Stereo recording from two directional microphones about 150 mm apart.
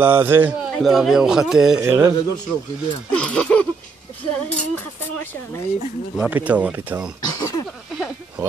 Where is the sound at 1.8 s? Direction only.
20° right (ahead or behind).